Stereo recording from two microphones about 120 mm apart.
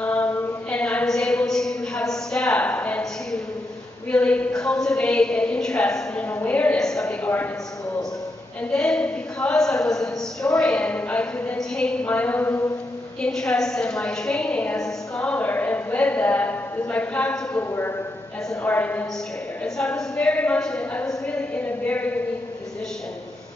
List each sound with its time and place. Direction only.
0.0 s chant: 15° left (ahead or behind)
4.1 s a woman's voice: 10° left (ahead or behind)
8.6 s a woman's voice: 5° left (ahead or behind)
13.2 s a woman's voice: 5° left (ahead or behind)
21.3 s a sound: 10° left (ahead or behind)